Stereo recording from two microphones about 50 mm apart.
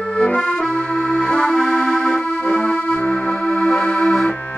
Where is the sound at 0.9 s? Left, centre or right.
Left.